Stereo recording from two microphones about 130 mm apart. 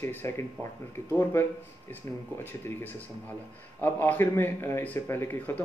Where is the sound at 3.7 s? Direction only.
15° left (ahead or behind).